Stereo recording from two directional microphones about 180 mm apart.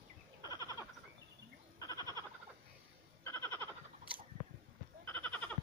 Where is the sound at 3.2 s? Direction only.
15° left (ahead or behind).